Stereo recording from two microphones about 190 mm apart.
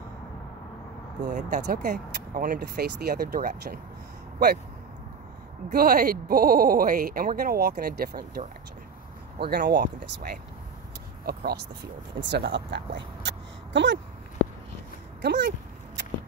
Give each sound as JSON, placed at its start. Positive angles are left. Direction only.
{"t": 1.2, "sound": "speech", "side_deg": -40}
{"t": 5.7, "sound": "speech", "side_deg": -50}
{"t": 9.4, "sound": "speech", "side_deg": -60}
{"t": 12.2, "sound": "speech", "side_deg": -65}
{"t": 15.2, "sound": "speech", "side_deg": -60}